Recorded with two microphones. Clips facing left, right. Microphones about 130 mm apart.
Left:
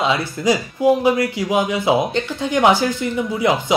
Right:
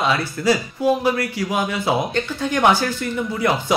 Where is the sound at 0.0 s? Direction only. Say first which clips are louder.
Left 1 dB; 20° left (ahead or behind).